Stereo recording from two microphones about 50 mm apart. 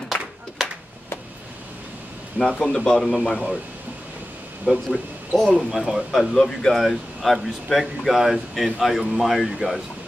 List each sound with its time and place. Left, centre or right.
0.1 s a sound: left
2.6 s speech: centre
4.6 s speech: centre
5.6 s speech: centre
6.1 s speech: centre
6.8 s speech: centre